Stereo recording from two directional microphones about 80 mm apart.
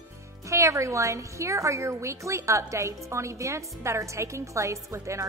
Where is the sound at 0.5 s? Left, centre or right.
Right.